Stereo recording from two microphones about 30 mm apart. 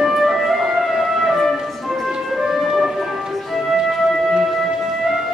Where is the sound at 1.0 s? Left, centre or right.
Centre.